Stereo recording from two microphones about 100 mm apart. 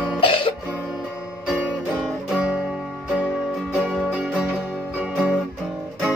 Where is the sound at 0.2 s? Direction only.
60° left (ahead or behind).